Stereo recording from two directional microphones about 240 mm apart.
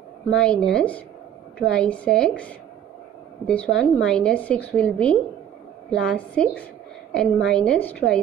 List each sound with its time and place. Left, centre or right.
0.3 s a woman's voice: centre